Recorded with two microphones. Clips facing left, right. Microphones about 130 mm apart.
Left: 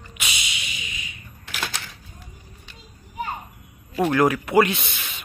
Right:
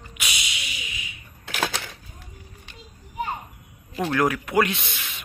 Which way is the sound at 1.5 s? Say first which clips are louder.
Right 4 dB; 60° right (ahead or behind).